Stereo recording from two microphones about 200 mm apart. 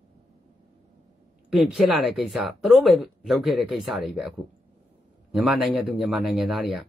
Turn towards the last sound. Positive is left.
turn(degrees=0)  # may be behind; listen again after turning